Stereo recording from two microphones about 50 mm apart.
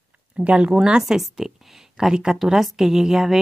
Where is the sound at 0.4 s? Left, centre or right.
Right.